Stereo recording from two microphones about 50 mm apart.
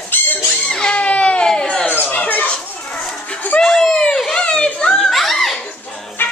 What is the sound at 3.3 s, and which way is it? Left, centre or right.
Dog, left.